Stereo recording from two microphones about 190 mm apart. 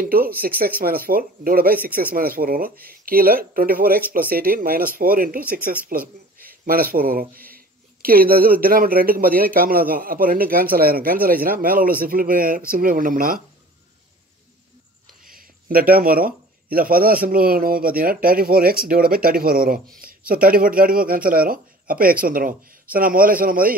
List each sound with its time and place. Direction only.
0.0 s a man's voice: 50° right (ahead or behind)
15.2 s a man's voice: 50° right (ahead or behind)